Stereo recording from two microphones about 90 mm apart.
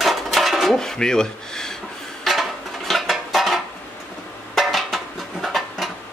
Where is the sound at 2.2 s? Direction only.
Centre (ahead or behind).